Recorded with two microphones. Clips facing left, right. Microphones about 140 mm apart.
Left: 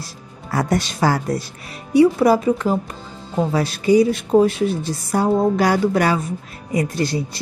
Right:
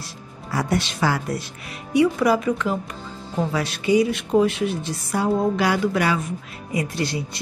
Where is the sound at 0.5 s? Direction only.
45° left (ahead or behind).